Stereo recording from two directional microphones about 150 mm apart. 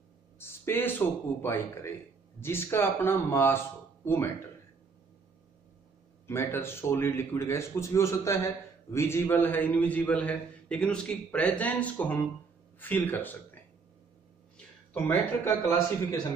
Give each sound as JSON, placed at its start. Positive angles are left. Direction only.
{"t": 0.4, "sound": "a man's voice", "side_deg": 15}
{"t": 6.2, "sound": "a man's voice", "side_deg": 15}
{"t": 15.0, "sound": "a man's voice", "side_deg": 10}